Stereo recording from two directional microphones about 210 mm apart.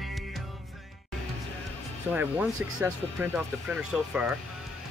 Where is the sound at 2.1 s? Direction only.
10° right (ahead or behind).